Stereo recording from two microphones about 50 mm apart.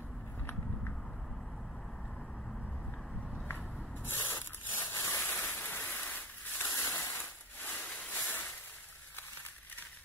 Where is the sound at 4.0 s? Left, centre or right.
Left.